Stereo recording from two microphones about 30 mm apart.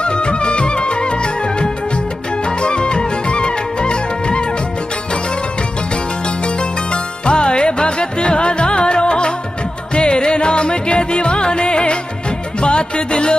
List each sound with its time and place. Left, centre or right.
0.0 s music: left
6.2 s music: left